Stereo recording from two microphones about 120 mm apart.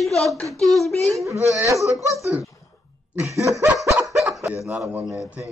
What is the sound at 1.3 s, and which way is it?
Speech, 25° right (ahead or behind).